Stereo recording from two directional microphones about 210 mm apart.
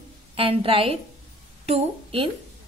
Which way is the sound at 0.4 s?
25° right (ahead or behind).